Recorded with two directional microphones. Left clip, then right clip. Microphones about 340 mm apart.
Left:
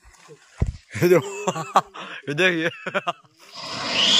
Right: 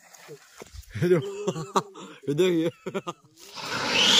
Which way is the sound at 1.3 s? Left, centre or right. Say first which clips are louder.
Left 6 dB; centre.